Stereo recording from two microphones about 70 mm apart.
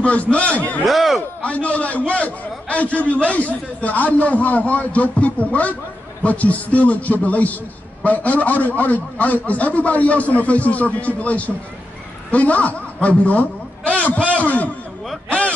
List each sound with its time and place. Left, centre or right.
0.0 s a man's voice: centre
0.8 s speech: centre
1.4 s a man's voice: centre
15.2 s a sound: centre